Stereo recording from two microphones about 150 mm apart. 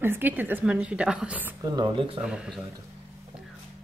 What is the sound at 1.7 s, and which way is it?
Speech, 30° right (ahead or behind).